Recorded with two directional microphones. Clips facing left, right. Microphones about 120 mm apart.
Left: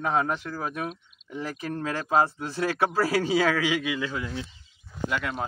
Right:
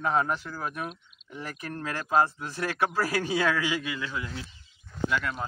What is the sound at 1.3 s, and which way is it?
Speech, 25° left (ahead or behind).